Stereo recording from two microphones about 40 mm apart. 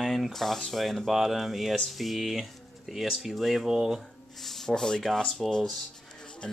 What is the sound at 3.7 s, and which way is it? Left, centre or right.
Speech, centre.